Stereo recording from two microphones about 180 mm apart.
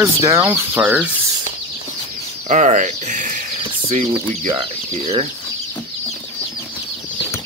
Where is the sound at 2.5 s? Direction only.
45° right (ahead or behind).